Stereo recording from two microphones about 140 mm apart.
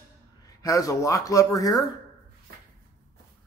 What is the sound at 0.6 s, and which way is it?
Speech, 25° left (ahead or behind).